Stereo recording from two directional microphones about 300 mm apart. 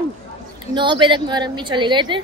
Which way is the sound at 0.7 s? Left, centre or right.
Centre.